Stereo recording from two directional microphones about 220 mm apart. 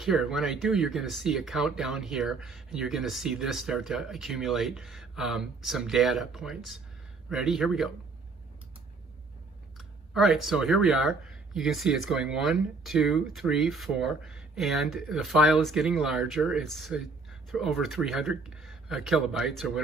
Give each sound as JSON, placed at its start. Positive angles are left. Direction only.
{"t": 0.0, "sound": "speech", "side_deg": 0}
{"t": 9.8, "sound": "speech", "side_deg": 0}